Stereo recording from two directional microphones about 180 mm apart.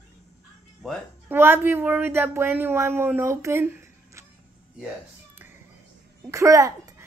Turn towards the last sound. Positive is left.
turn(degrees=-20)  # may be behind; listen again after turning